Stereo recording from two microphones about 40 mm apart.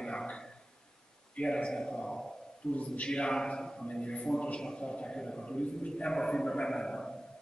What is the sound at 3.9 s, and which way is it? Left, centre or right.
A man's voice, left.